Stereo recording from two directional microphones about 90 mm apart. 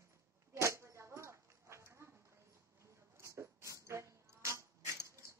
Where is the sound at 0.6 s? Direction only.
30° right (ahead or behind).